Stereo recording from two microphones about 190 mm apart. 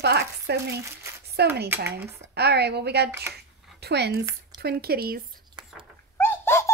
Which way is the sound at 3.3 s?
60° right (ahead or behind).